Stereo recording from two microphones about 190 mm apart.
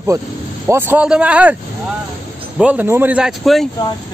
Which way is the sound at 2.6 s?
10° right (ahead or behind).